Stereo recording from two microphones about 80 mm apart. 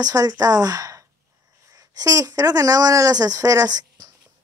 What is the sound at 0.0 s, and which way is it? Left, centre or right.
Speech, right.